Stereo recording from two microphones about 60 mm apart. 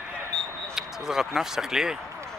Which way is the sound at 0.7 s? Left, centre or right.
Centre.